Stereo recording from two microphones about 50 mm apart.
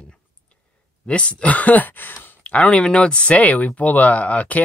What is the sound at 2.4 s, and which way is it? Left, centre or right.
Speech, left.